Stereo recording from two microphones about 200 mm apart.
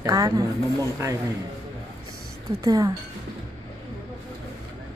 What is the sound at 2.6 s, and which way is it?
Speech, 20° right (ahead or behind).